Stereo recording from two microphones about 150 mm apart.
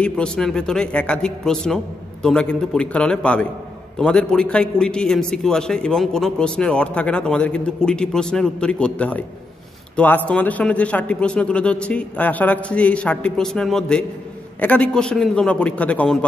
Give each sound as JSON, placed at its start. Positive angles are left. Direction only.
{"t": 0.0, "sound": "a man's voice", "side_deg": 5}